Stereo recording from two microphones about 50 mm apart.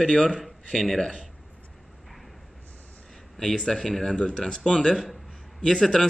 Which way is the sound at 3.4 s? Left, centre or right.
Centre.